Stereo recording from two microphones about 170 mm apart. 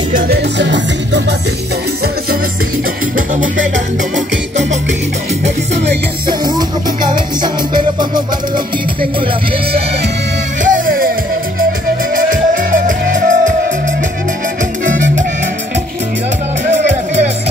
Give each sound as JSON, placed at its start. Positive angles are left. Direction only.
{"t": 0.1, "sound": "music", "side_deg": -80}
{"t": 7.4, "sound": "music", "side_deg": -25}
{"t": 10.6, "sound": "music", "side_deg": -55}
{"t": 12.2, "sound": "music", "side_deg": -50}
{"t": 16.6, "sound": "music", "side_deg": -40}